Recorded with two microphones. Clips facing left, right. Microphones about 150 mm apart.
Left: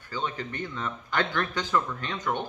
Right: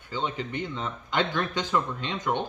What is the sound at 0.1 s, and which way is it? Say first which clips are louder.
Speech: right 2 dB; 20° right (ahead or behind).